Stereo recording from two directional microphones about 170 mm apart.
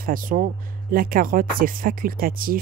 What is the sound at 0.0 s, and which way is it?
Speech, 55° right (ahead or behind).